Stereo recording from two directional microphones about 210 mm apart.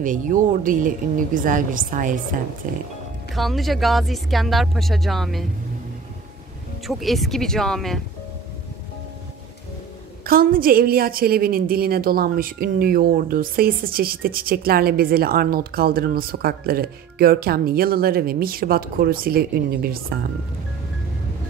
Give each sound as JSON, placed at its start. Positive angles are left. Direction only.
{"t": 0.0, "sound": "a woman's voice", "side_deg": -40}
{"t": 3.3, "sound": "speech", "side_deg": 0}
{"t": 6.9, "sound": "speech", "side_deg": 0}
{"t": 10.2, "sound": "a woman's voice", "side_deg": -45}